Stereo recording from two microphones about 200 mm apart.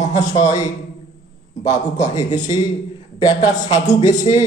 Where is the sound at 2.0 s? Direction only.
20° left (ahead or behind).